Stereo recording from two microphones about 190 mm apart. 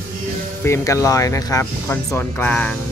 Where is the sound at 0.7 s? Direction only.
15° left (ahead or behind).